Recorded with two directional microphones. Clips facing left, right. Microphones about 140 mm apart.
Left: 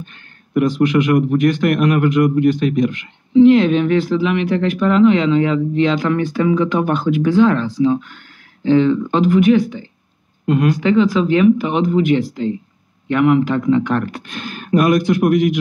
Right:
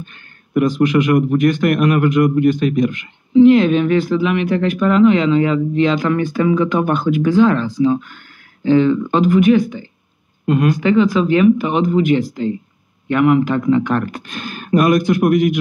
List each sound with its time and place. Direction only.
0.7 s speech: 45° right (ahead or behind)